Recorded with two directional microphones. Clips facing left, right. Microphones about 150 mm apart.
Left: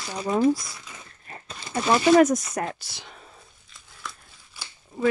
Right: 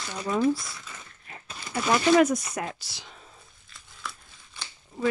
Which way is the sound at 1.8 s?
45° left (ahead or behind).